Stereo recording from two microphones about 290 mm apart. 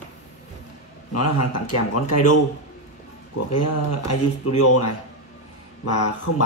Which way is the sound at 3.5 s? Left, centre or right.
Left.